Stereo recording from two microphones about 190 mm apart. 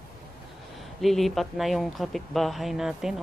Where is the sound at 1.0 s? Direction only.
Centre (ahead or behind).